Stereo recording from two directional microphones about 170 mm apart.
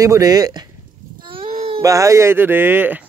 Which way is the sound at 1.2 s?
30° right (ahead or behind).